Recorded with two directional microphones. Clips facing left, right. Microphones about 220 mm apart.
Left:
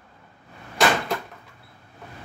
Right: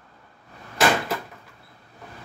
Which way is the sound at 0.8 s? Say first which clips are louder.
Even; centre (ahead or behind).